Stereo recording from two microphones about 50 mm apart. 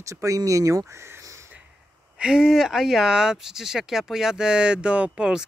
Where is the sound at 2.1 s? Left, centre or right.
Centre.